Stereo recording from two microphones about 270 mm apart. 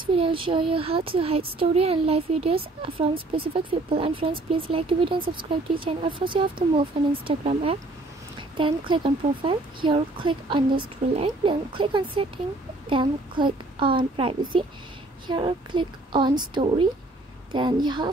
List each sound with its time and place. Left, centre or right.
0.0 s a woman's voice: centre